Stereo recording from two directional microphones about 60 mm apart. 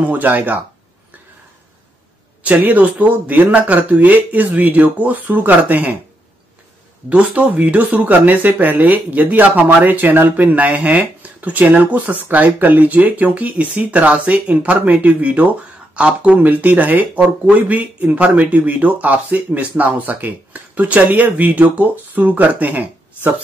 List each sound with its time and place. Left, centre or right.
0.0 s speech: right
2.4 s speech: right
7.1 s speech: right